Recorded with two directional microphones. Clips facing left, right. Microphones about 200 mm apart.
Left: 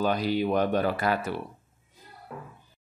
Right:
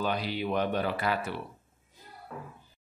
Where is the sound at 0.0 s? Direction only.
45° left (ahead or behind).